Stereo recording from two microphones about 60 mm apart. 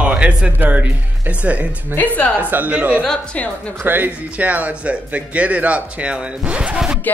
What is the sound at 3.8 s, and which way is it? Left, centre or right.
Speech, right.